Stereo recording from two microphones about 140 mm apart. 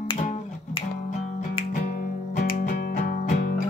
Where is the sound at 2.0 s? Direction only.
90° left; by 3.5 s 60° left (ahead or behind).